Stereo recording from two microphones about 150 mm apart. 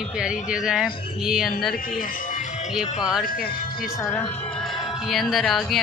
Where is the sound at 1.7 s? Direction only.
65° left (ahead or behind).